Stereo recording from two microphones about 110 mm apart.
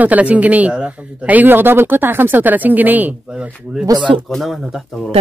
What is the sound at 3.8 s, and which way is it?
Speech, 45° right (ahead or behind).